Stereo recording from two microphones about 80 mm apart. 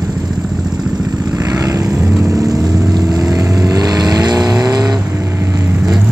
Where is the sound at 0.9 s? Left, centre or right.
Right.